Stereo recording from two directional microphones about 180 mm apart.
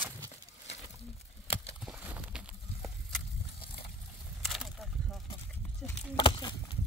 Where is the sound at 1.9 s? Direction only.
10° right (ahead or behind).